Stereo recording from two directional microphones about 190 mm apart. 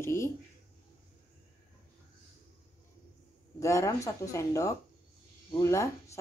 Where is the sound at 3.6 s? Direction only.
15° left (ahead or behind).